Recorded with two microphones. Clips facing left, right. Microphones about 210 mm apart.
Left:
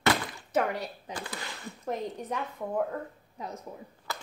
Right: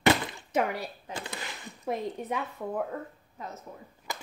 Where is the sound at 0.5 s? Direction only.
10° right (ahead or behind).